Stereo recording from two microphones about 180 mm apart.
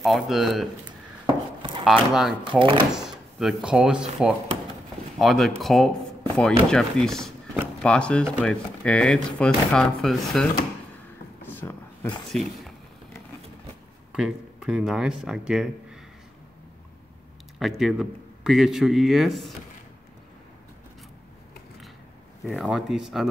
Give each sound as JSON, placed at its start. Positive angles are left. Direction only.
{"t": 0.0, "sound": "speech", "side_deg": 0}
{"t": 1.6, "sound": "a sound", "side_deg": -30}
{"t": 1.9, "sound": "speech", "side_deg": 0}
{"t": 2.5, "sound": "speech", "side_deg": -25}
{"t": 2.9, "sound": "speech", "side_deg": 0}
{"t": 11.5, "sound": "a sound", "side_deg": 10}
{"t": 12.3, "sound": "speech", "side_deg": 0}
{"t": 14.1, "sound": "speech", "side_deg": -5}
{"t": 17.6, "sound": "speech", "side_deg": 0}
{"t": 22.4, "sound": "speech", "side_deg": 0}